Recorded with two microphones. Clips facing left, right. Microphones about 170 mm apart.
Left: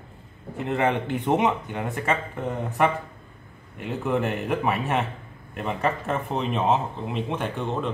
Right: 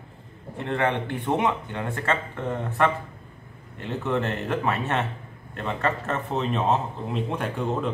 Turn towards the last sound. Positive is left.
turn(degrees=0)  # may be behind; listen again after turning